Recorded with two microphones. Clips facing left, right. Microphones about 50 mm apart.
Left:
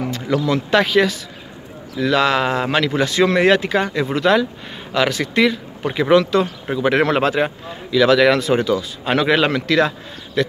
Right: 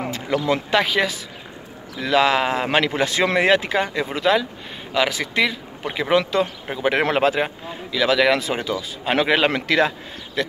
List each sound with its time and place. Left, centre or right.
0.0 s speech: right
0.7 s speech: centre
3.4 s a man's voice: centre